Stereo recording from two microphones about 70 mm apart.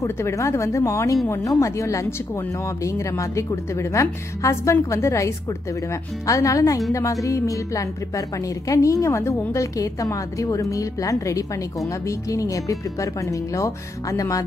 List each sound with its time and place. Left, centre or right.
0.0 s a woman's voice: left